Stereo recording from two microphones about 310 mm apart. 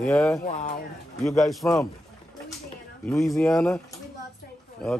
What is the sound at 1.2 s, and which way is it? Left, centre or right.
Speech, centre.